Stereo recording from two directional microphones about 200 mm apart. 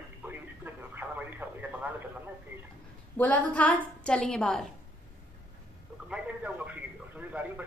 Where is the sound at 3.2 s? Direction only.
5° left (ahead or behind).